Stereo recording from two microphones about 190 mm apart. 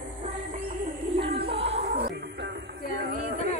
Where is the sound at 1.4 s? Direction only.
30° right (ahead or behind).